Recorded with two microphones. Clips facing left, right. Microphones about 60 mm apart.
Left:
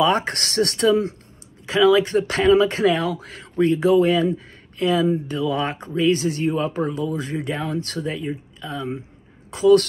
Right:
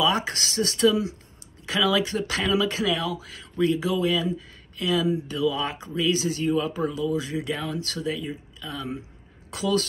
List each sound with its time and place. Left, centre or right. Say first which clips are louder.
0.0 s speech: left 4 dB; left
0.8 s speech: left 2 dB; left
1.7 s speech: left 7 dB; left